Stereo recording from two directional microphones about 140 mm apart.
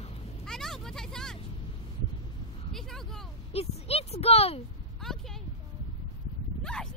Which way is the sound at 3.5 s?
45° left (ahead or behind).